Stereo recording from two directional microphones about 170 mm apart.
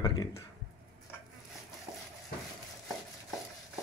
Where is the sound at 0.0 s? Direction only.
25° left (ahead or behind).